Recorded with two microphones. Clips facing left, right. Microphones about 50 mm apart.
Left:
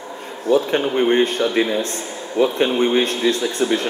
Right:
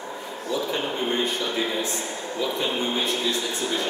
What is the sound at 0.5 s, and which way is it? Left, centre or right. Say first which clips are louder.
Speech: left 10 dB; left.